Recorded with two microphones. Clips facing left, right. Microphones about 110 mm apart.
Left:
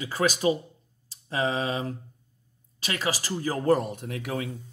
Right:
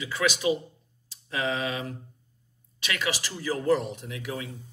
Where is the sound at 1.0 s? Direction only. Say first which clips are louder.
Left 2 dB; 40° left (ahead or behind).